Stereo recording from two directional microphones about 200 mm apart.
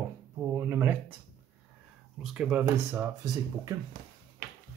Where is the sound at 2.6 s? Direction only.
15° right (ahead or behind).